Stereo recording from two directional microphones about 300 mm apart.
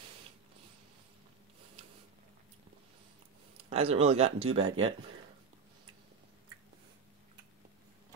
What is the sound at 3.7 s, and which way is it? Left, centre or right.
Speech, centre.